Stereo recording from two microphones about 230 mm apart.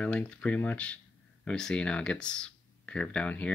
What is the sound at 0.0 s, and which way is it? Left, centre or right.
Speech, centre.